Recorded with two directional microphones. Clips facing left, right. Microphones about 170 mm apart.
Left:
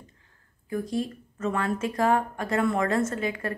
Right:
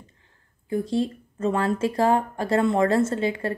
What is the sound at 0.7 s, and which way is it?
Speech, 30° right (ahead or behind).